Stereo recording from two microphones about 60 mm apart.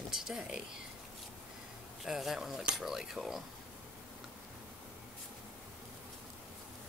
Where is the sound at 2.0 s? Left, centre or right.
Centre.